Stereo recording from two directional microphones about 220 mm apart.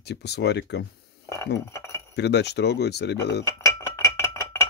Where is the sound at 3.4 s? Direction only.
15° left (ahead or behind).